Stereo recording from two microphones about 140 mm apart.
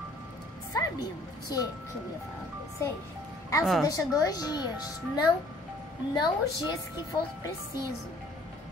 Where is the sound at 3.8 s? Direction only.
25° left (ahead or behind).